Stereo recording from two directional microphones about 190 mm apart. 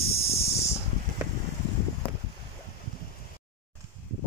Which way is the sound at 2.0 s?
30° left (ahead or behind).